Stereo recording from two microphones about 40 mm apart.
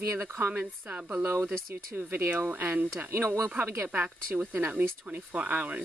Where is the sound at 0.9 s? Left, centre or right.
Right.